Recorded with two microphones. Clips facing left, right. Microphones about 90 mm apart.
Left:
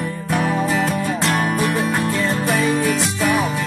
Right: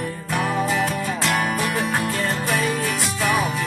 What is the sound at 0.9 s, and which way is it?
Music, 25° left (ahead or behind).